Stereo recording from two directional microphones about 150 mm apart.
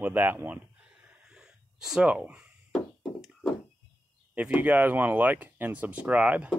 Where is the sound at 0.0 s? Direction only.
10° right (ahead or behind).